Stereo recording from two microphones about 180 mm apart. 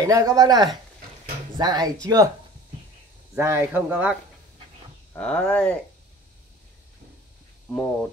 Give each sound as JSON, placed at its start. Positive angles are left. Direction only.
{"t": 0.0, "sound": "speech", "side_deg": -20}
{"t": 3.3, "sound": "speech", "side_deg": -15}
{"t": 5.1, "sound": "speech", "side_deg": 5}
{"t": 7.7, "sound": "speech", "side_deg": 10}